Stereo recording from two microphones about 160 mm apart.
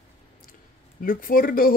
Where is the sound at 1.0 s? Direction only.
60° left (ahead or behind).